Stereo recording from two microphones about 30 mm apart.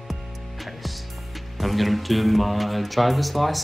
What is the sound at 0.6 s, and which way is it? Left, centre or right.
Music, centre.